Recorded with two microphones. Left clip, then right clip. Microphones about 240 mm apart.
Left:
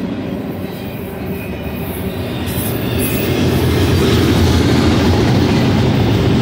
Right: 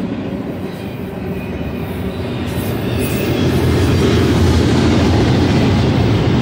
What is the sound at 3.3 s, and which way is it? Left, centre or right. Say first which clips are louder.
Vehicle: even; left.